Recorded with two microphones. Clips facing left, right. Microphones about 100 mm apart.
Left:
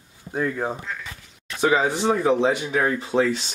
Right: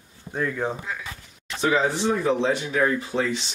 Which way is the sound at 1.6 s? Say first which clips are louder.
Left 2 dB; 15° left (ahead or behind).